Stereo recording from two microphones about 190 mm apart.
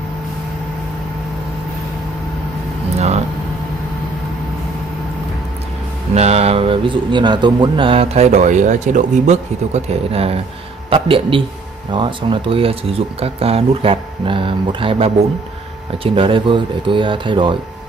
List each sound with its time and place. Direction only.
6.1 s speech: 35° right (ahead or behind)